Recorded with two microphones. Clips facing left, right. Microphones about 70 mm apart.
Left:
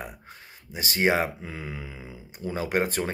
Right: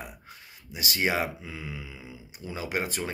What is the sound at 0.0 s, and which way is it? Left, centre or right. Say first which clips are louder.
Speech: left 3 dB; left.